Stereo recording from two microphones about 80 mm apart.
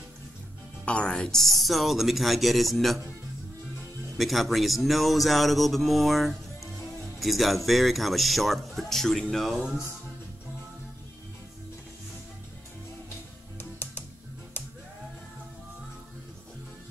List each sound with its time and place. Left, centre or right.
0.8 s speech: centre
4.2 s speech: centre
13.6 s music: left